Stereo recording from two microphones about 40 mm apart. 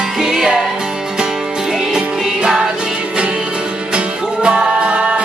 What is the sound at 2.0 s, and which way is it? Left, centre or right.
Music, centre.